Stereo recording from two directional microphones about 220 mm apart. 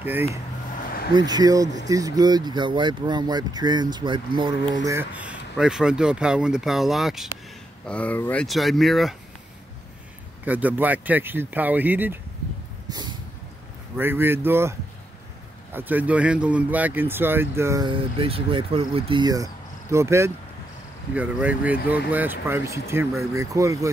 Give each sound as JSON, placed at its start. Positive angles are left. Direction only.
{"t": 1.1, "sound": "speech", "side_deg": -15}
{"t": 4.8, "sound": "speech", "side_deg": -10}
{"t": 10.4, "sound": "speech", "side_deg": -5}
{"t": 12.9, "sound": "a sound", "side_deg": -20}
{"t": 13.9, "sound": "speech", "side_deg": -10}